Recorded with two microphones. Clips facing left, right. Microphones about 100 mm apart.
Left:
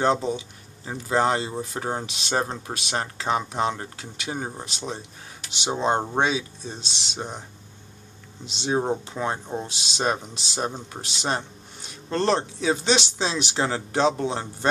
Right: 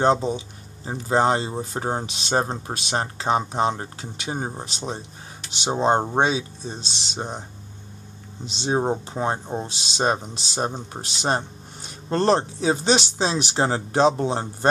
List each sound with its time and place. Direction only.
0.0 s speech: 30° right (ahead or behind)
8.5 s speech: 35° right (ahead or behind)